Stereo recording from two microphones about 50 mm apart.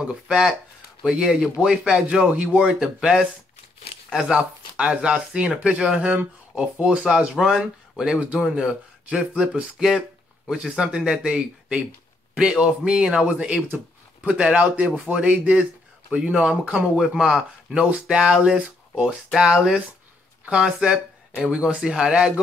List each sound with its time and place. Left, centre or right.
0.3 s speech: centre
2.4 s speech: centre
10.5 s speech: centre